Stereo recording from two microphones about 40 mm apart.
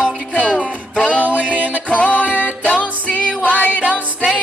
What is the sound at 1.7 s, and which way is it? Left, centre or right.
Music, left.